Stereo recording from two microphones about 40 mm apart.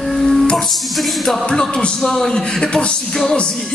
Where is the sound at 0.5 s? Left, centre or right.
Centre.